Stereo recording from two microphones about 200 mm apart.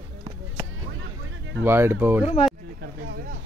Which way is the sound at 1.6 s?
10° right (ahead or behind).